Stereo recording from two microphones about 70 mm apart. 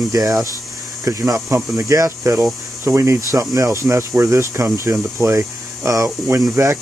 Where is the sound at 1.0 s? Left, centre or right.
Right.